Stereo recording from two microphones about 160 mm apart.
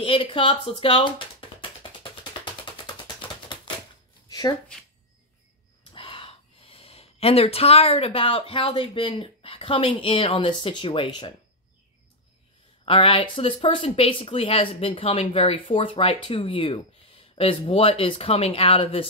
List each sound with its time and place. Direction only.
0.0 s speech: 35° left (ahead or behind)
3.2 s typewriter: 30° left (ahead or behind)
4.3 s a sound: 25° left (ahead or behind)
5.9 s speech: 35° left (ahead or behind)
12.8 s speech: 35° left (ahead or behind)